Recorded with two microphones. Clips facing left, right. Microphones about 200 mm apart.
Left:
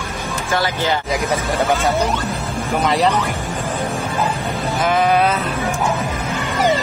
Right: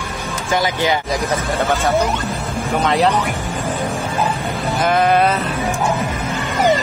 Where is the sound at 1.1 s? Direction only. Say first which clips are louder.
Even; centre (ahead or behind).